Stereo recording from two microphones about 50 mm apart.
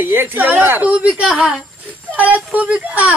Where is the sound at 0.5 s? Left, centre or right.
Right.